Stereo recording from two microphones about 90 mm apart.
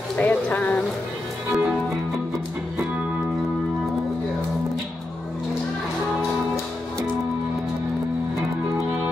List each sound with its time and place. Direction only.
0.2 s speech: 15° left (ahead or behind)
1.5 s music: 10° right (ahead or behind)